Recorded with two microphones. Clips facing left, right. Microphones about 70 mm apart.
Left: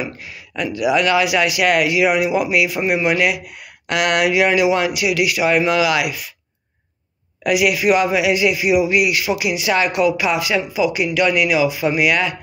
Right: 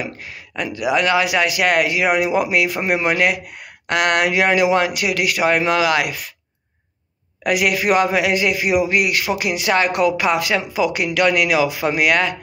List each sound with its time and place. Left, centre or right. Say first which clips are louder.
0.6 s speech: left 2 dB; right
7.4 s a man's voice: left 2 dB; right